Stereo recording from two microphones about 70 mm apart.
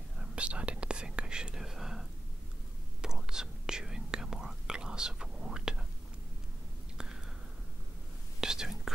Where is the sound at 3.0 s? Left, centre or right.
Centre.